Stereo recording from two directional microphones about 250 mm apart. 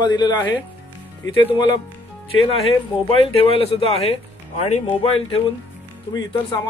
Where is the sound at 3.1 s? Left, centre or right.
Left.